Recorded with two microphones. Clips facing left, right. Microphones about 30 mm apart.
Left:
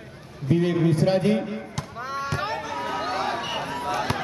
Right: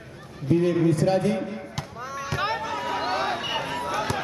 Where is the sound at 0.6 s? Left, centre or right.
Left.